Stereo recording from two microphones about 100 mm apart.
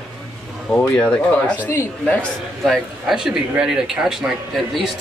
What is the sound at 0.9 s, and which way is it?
Speech, 10° left (ahead or behind).